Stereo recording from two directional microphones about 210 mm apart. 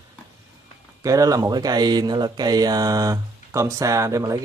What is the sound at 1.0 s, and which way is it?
Speech, 15° right (ahead or behind).